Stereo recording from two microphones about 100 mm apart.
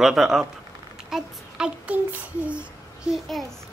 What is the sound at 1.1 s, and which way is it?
Child singing, 5° right (ahead or behind).